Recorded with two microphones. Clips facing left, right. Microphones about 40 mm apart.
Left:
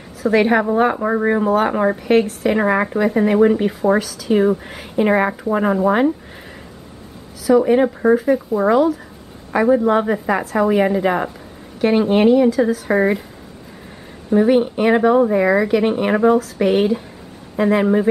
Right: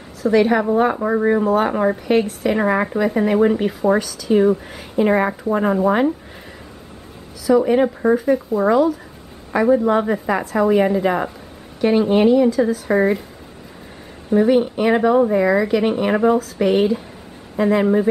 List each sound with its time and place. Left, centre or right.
0.3 s speech: centre
7.4 s speech: centre
12.4 s speech: centre
14.3 s speech: centre